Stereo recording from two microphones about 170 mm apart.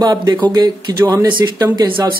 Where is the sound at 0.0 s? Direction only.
20° right (ahead or behind).